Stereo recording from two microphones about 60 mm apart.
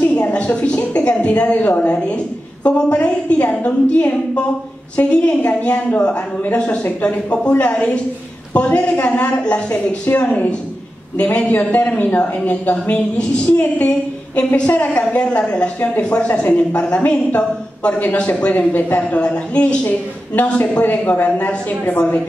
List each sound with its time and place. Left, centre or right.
0.0 s a woman's voice: left
20.8 s a woman's voice: left